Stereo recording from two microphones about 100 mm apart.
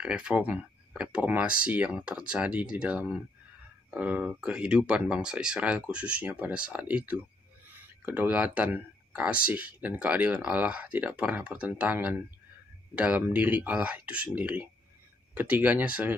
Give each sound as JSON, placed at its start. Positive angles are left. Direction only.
{"t": 0.0, "sound": "speech", "side_deg": -10}